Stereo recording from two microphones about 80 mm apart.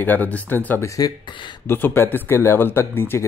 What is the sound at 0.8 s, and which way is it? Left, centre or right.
Speech, left.